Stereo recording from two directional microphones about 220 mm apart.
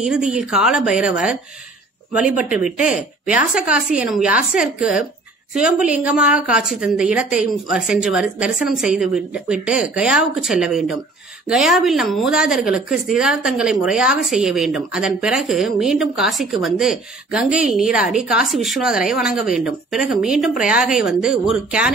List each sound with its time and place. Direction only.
0.0 s a woman's voice: 5° right (ahead or behind)